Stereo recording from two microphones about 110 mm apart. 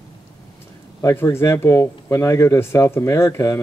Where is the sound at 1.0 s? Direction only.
25° left (ahead or behind).